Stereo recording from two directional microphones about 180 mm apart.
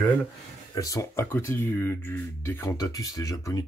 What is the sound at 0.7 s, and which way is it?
Speech, 20° left (ahead or behind).